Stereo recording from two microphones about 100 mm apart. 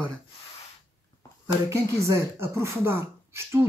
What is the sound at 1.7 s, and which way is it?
Speech, 25° right (ahead or behind).